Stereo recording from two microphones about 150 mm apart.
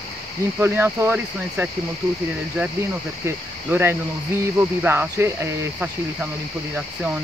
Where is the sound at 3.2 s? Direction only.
15° right (ahead or behind).